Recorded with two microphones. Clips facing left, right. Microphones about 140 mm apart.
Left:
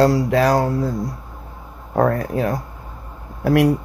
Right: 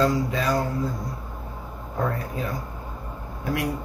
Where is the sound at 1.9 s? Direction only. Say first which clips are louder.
Left 10 dB; 70° left (ahead or behind).